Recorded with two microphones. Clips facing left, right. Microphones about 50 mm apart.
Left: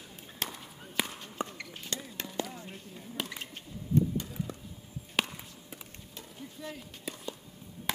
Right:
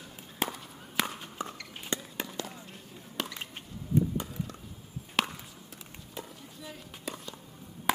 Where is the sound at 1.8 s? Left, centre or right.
Right.